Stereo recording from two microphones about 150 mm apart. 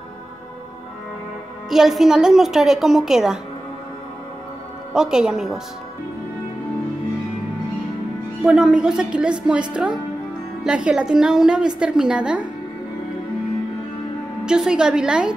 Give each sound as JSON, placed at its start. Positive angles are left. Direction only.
{"t": 1.7, "sound": "a woman's voice", "side_deg": 0}
{"t": 4.9, "sound": "a woman's voice", "side_deg": -5}
{"t": 8.5, "sound": "a woman's voice", "side_deg": -5}
{"t": 14.4, "sound": "a woman's voice", "side_deg": -5}